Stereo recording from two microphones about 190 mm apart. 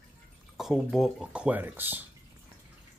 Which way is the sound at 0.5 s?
Centre (ahead or behind).